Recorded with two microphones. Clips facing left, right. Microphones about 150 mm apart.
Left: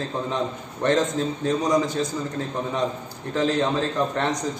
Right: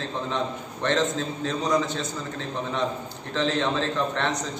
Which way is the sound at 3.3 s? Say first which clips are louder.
Left 3 dB; 15° left (ahead or behind).